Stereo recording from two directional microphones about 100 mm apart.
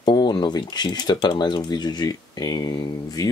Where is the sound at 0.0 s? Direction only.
50° left (ahead or behind).